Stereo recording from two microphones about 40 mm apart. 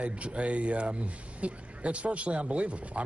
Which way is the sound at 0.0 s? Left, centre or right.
Right.